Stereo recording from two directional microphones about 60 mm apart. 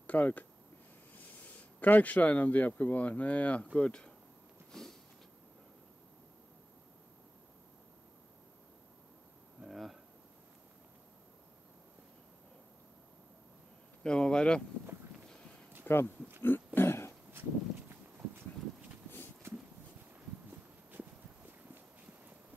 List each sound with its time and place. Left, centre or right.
0.0 s speech: left
9.7 s a sound: centre
14.0 s speech: centre
15.9 s speech: left
16.4 s a sound: left
17.3 s horse: right